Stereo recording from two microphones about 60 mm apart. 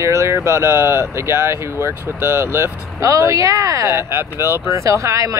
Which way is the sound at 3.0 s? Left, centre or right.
Right.